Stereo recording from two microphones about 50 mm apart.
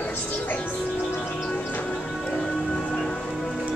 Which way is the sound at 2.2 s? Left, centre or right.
Centre.